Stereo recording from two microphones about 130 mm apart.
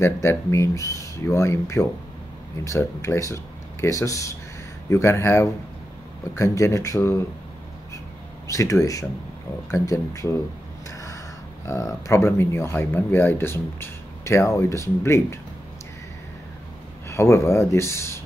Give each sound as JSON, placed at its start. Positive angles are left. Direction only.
{"t": 0.0, "sound": "speech", "side_deg": 20}
{"t": 8.5, "sound": "speech", "side_deg": 25}
{"t": 11.6, "sound": "speech", "side_deg": 20}
{"t": 17.1, "sound": "speech", "side_deg": 20}